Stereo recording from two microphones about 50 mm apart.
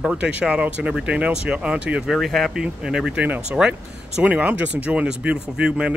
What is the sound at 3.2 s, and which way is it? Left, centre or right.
Speech, right.